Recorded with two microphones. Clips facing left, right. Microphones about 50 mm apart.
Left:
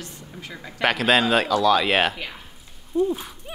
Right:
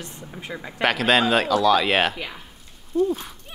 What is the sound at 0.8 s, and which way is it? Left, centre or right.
Speech, centre.